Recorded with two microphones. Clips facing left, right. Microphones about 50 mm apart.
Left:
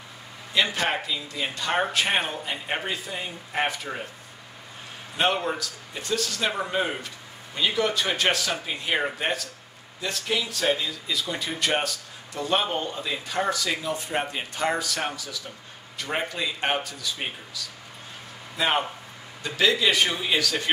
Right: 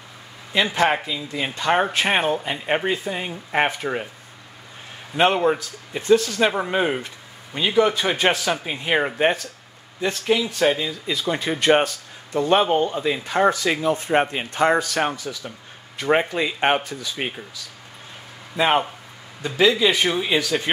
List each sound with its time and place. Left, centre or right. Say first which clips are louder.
0.5 s speech: right 5 dB; right
5.1 s speech: right 7 dB; right
11.1 s speech: right 7 dB; right
18.6 s speech: right 5 dB; right
19.4 s speech: right 5 dB; centre